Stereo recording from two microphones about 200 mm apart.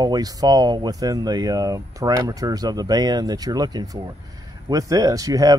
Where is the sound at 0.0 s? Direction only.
20° right (ahead or behind).